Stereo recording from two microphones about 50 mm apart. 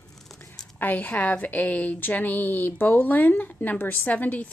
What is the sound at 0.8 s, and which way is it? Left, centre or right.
A woman's voice, left.